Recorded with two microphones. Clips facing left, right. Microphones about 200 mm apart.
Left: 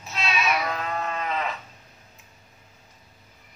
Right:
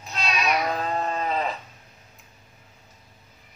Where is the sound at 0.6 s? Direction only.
30° right (ahead or behind).